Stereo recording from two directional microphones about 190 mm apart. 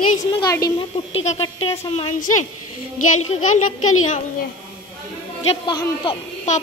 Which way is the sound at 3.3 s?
40° left (ahead or behind).